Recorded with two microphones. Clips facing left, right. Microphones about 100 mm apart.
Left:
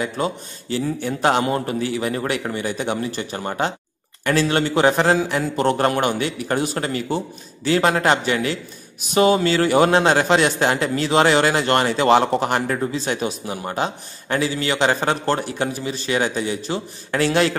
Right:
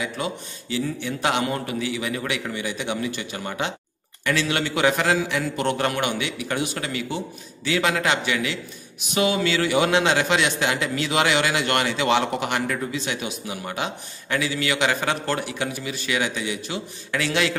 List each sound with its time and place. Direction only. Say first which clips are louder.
0.0 s a man's voice: left 5 dB; 40° left (ahead or behind)